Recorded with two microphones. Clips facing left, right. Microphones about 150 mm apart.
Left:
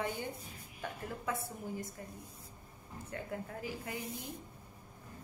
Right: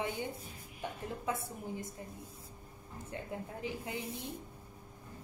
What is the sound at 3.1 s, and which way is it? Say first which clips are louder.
Speech: even; 20° right (ahead or behind).